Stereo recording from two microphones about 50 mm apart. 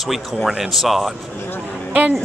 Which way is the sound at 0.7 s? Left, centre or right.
Centre.